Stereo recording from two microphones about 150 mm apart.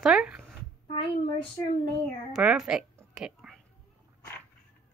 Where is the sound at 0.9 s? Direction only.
35° left (ahead or behind).